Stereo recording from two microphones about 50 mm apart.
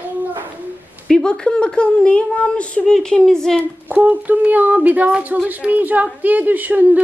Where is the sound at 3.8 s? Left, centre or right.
Right.